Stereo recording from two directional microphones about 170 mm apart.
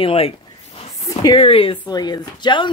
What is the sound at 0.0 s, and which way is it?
Speech, 35° left (ahead or behind).